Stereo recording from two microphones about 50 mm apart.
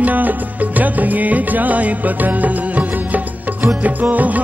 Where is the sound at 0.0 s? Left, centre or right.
Right.